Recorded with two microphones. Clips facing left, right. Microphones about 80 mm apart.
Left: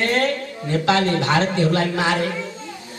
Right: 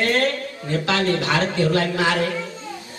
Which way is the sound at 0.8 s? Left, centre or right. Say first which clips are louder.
Left 3 dB; left.